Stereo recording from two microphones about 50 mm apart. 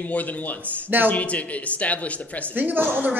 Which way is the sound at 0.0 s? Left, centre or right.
Left.